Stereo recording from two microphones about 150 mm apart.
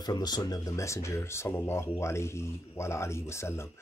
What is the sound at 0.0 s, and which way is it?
Speech, 25° left (ahead or behind).